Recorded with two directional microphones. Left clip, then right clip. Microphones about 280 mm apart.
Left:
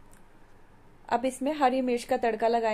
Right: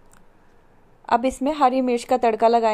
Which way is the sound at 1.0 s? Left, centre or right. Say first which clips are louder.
Right 7 dB; centre.